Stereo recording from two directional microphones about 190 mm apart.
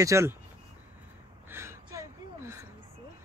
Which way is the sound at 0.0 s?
15° right (ahead or behind).